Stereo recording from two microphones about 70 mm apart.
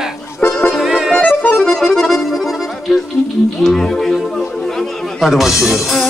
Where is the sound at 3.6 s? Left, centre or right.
Centre.